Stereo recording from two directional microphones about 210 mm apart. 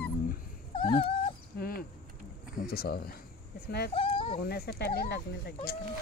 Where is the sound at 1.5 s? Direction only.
45° left (ahead or behind).